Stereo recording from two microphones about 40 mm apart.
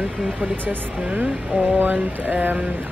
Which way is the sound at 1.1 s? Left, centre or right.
Right.